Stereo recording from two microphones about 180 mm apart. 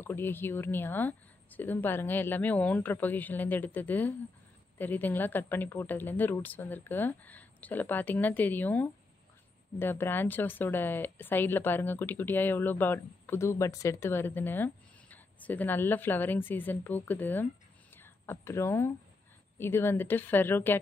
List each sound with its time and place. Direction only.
0.0 s speech: 10° left (ahead or behind)